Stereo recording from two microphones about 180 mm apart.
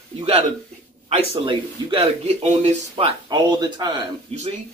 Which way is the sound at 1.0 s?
30° right (ahead or behind).